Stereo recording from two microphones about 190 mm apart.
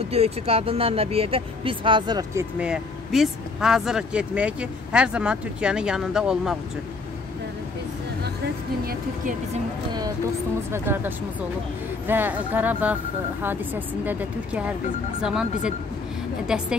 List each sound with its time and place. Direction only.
0.1 s speech: 30° right (ahead or behind)
2.6 s speech: 5° right (ahead or behind)
10.7 s speech: 10° right (ahead or behind)